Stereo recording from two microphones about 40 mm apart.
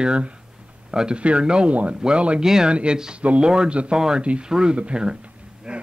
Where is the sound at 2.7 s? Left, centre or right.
Right.